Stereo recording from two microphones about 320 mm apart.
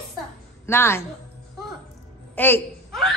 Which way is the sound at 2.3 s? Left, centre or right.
Centre.